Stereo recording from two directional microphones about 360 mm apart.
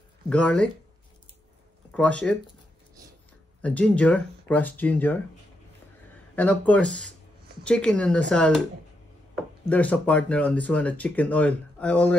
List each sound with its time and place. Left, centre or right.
0.3 s speech: centre
1.9 s speech: centre
3.6 s speech: centre
6.3 s speech: centre
9.7 s speech: centre